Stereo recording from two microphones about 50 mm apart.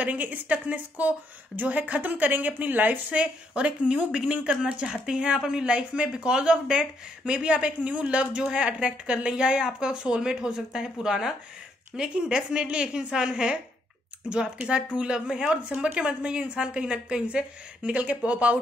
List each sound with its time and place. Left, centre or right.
0.0 s a woman's voice: right